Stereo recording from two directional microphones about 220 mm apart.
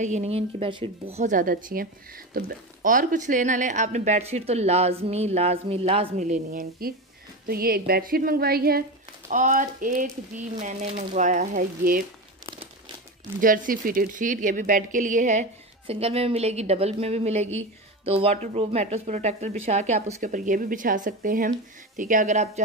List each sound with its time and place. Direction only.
0.0 s a woman's voice: 30° right (ahead or behind)
12.4 s crumpling: 20° right (ahead or behind)
13.4 s a woman's voice: 40° right (ahead or behind)